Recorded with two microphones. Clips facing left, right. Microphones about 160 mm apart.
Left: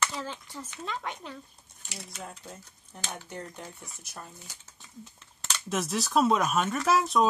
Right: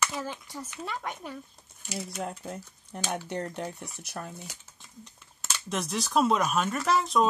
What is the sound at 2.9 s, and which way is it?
Speech, 70° right (ahead or behind).